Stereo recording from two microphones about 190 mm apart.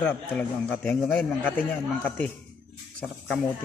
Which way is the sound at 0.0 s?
5° left (ahead or behind).